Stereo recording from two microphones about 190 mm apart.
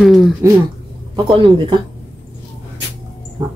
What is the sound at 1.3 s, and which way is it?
Speech, 25° right (ahead or behind).